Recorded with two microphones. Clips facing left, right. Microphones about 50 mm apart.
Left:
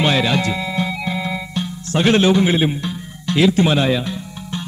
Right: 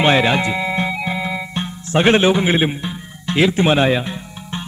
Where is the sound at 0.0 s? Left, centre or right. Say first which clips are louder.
Right 3 dB; right.